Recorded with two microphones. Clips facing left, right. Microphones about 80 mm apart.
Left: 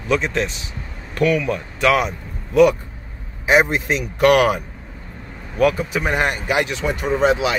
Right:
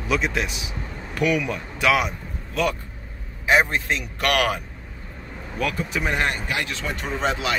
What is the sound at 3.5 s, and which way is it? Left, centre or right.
Speech, centre.